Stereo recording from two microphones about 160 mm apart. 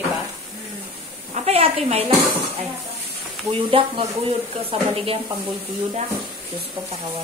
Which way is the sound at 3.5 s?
35° right (ahead or behind).